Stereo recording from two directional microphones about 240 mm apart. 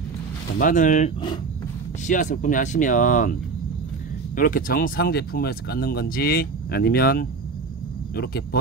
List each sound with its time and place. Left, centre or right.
0.6 s speech: left
4.4 s speech: left